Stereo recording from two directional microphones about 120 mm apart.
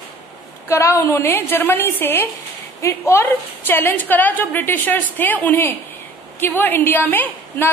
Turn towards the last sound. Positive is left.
turn(degrees=15)  # may be behind; listen again after turning